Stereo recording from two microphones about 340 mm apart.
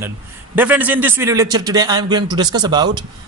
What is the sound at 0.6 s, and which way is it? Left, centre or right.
A man's voice, centre.